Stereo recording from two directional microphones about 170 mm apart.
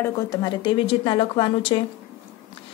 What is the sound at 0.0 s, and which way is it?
A woman's voice, 20° left (ahead or behind).